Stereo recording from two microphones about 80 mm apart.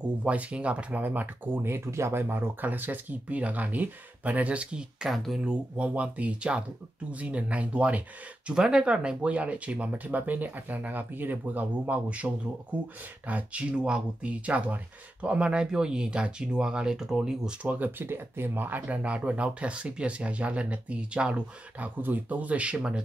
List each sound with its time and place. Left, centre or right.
0.0 s speech: centre
5.1 s speech: centre
5.4 s speech: centre
13.3 s speech: centre
17.6 s speech: right